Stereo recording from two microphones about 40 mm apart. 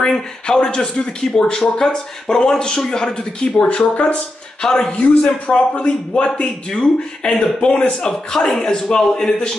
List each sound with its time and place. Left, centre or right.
0.0 s speech: left
3.5 s speech: left
4.6 s speech: left